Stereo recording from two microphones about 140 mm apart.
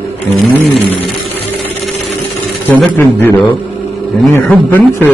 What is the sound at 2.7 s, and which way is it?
Speech, 15° left (ahead or behind).